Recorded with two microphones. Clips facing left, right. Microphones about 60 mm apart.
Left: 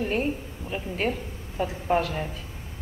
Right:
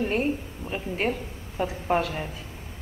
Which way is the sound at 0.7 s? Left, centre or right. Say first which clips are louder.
Right 1 dB; centre.